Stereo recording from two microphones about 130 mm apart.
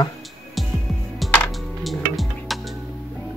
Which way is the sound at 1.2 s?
Centre (ahead or behind).